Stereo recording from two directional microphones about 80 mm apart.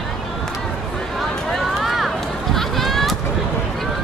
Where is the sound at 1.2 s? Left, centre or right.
Centre.